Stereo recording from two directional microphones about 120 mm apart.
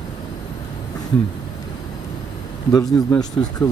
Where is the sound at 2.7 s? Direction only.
30° left (ahead or behind).